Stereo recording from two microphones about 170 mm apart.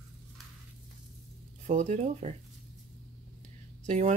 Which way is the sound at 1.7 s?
40° right (ahead or behind).